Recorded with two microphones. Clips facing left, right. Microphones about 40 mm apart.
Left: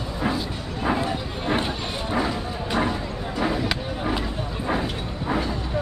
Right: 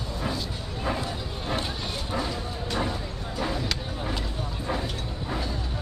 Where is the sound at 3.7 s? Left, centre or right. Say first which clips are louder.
Left 5 dB; left.